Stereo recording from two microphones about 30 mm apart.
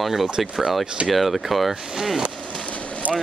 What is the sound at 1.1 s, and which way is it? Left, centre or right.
Speech, centre.